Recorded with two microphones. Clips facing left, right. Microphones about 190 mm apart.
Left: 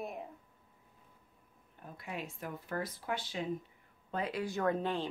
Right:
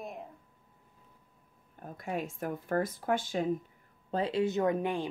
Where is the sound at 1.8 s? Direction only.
45° right (ahead or behind).